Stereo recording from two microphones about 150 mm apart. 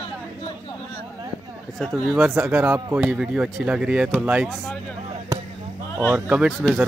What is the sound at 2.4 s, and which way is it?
Speech, 15° right (ahead or behind).